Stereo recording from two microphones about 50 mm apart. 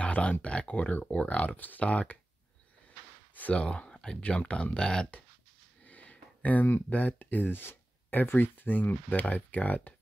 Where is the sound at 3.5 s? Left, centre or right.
Left.